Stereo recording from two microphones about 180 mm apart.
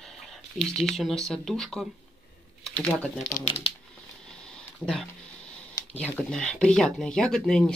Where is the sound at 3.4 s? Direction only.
40° left (ahead or behind).